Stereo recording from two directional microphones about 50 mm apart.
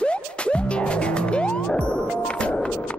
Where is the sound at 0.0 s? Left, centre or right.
Left.